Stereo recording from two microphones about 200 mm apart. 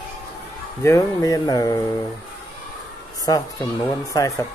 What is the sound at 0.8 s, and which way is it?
Speech, 15° left (ahead or behind).